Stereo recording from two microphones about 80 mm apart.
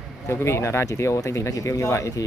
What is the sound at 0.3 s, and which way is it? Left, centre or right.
Speech, left.